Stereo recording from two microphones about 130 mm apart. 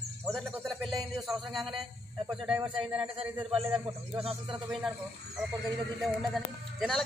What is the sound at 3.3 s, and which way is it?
Music, 45° right (ahead or behind).